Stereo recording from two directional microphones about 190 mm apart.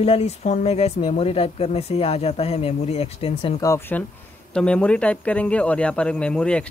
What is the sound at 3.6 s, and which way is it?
Speech, 15° left (ahead or behind).